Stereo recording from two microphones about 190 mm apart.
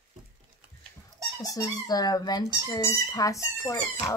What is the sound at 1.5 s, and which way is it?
Speech, 20° left (ahead or behind).